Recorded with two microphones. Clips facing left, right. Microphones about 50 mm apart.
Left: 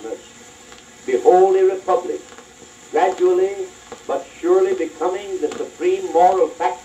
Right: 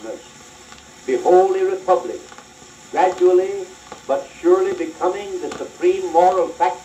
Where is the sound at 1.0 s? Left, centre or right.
Centre.